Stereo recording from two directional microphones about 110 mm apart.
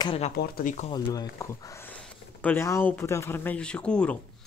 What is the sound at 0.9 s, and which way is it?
Speech, 35° left (ahead or behind).